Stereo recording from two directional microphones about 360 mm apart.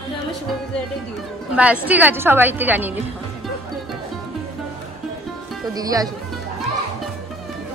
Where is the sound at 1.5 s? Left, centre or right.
Centre.